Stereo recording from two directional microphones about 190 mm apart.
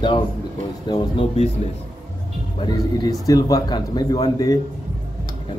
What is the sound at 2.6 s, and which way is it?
Speech, 20° left (ahead or behind).